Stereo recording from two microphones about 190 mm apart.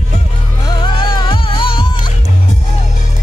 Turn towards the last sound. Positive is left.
turn(degrees=25)  # may be behind; listen again after turning